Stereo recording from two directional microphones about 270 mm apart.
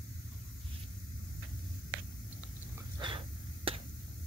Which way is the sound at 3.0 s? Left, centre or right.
Centre.